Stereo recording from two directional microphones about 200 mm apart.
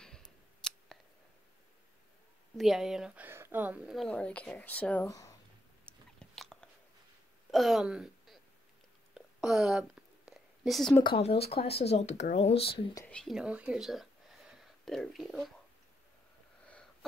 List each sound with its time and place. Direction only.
0.0 s scissors: 5° left (ahead or behind)
2.5 s speech: centre (ahead or behind); by 5.3 s 15° left (ahead or behind)
5.9 s biting: centre (ahead or behind)
7.5 s speech: centre (ahead or behind)
9.1 s whispering: 5° right (ahead or behind)
11.1 s speech: 30° left (ahead or behind)
13.0 s speech: 5° left (ahead or behind)